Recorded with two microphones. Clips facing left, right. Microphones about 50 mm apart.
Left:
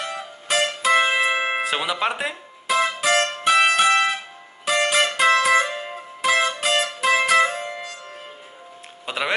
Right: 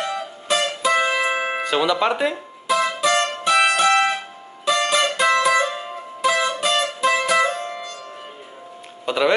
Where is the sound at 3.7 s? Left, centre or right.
Left.